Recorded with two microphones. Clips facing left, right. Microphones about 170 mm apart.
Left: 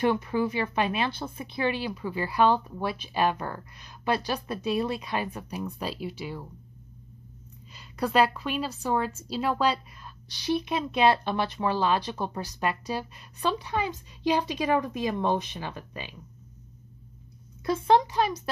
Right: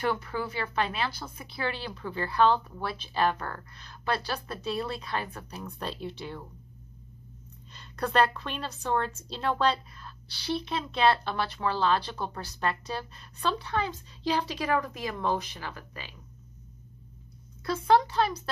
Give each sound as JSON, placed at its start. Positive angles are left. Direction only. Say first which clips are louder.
{"t": 0.0, "sound": "a woman's voice", "louder": "left 5 dB", "side_deg": 15}
{"t": 7.7, "sound": "a woman's voice", "louder": "left 2 dB", "side_deg": 5}
{"t": 17.6, "sound": "a woman's voice", "louder": "left 1 dB", "side_deg": 20}